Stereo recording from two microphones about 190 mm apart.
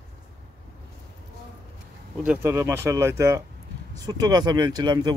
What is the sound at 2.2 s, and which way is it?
Speech, 10° right (ahead or behind).